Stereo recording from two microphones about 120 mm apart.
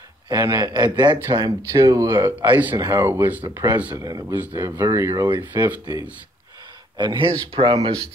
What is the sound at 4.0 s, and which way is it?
A man's voice, 30° right (ahead or behind).